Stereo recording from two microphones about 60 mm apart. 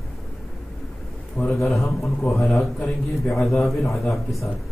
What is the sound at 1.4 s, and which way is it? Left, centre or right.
Speech, left.